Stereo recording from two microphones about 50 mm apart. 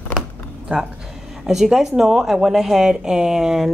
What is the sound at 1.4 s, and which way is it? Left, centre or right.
Speech, centre.